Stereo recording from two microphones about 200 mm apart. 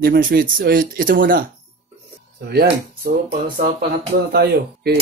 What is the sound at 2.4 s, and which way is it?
Speech, 50° right (ahead or behind).